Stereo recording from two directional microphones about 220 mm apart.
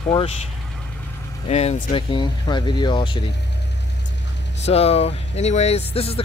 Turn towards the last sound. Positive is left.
turn(degrees=25)  # may be behind; listen again after turning